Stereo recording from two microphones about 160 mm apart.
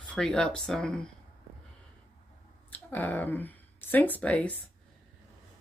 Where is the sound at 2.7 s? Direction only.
10° left (ahead or behind).